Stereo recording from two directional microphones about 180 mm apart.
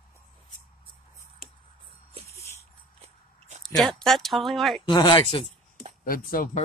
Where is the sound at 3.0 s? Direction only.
40° right (ahead or behind).